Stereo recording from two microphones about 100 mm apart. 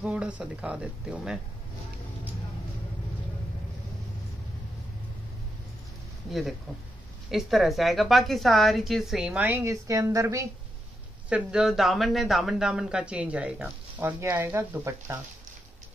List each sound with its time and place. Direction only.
0.0 s speech: 10° right (ahead or behind)
7.2 s a woman's voice: centre (ahead or behind)
9.5 s speech: 30° right (ahead or behind)
11.2 s speech: 10° right (ahead or behind)